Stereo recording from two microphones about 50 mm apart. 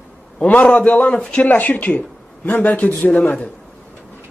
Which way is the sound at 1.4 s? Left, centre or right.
Left.